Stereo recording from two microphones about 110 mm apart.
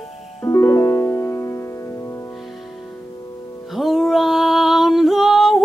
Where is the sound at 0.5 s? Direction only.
30° left (ahead or behind).